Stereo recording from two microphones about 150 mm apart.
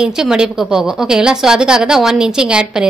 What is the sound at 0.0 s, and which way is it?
A woman's voice, 5° right (ahead or behind).